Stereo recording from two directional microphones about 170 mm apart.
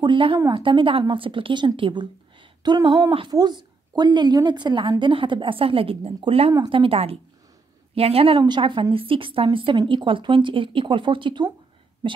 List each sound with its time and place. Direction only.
0.0 s a woman's voice: 30° right (ahead or behind)